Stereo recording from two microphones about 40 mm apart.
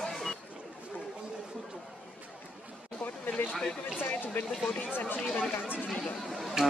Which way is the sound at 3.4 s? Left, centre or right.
Left.